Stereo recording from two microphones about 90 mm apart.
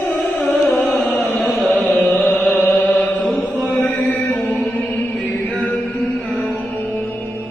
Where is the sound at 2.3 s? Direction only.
25° left (ahead or behind).